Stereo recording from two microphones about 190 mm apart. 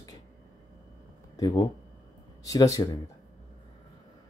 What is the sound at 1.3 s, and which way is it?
Speech, 20° left (ahead or behind).